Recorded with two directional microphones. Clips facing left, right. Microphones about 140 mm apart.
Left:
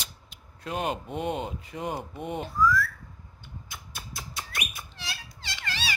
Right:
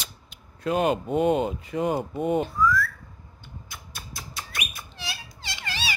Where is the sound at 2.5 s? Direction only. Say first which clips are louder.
Right 1 dB; centre (ahead or behind).